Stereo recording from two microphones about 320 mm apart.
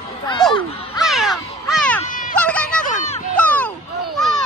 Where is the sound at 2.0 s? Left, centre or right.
Left.